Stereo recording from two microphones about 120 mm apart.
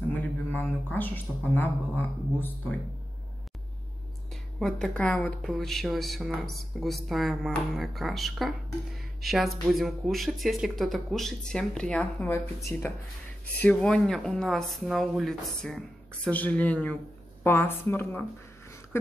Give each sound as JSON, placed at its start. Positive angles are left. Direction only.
{"t": 0.1, "sound": "speech", "side_deg": 15}
{"t": 4.6, "sound": "speech", "side_deg": 0}
{"t": 13.6, "sound": "a woman's voice", "side_deg": 10}